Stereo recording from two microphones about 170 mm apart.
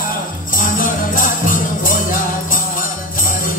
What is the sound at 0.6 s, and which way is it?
Music, 50° left (ahead or behind).